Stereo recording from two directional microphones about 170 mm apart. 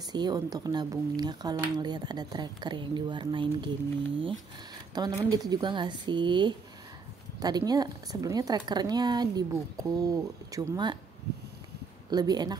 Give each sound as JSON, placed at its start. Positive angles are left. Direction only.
{"t": 0.1, "sound": "speech", "side_deg": -25}
{"t": 4.9, "sound": "speech", "side_deg": -25}
{"t": 12.1, "sound": "speech", "side_deg": -25}